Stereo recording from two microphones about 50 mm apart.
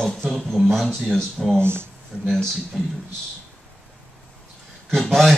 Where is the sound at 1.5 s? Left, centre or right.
Right.